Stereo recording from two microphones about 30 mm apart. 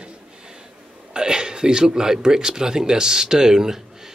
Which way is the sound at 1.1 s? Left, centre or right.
Right.